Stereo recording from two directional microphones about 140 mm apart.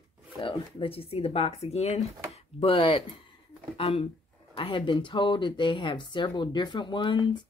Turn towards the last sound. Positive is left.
turn(degrees=35)  # may be behind; listen again after turning